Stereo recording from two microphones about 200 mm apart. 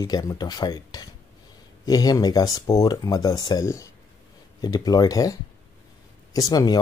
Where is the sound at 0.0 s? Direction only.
15° left (ahead or behind).